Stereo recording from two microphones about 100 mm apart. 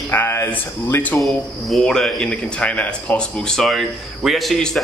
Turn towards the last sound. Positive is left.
turn(degrees=0)  # may be behind; listen again after turning